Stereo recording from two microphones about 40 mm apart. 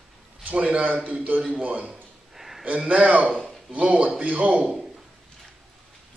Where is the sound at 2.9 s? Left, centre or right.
Right.